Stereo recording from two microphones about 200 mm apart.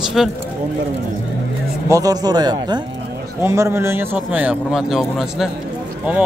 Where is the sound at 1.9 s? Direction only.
15° right (ahead or behind).